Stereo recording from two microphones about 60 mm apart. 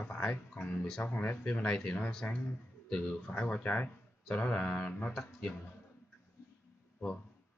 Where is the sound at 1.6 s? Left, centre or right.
Centre.